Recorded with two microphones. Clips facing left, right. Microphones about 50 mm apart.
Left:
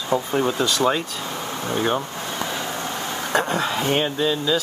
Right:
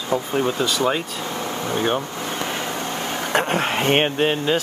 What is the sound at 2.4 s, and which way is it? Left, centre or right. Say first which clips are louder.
Speech: right 1 dB; right.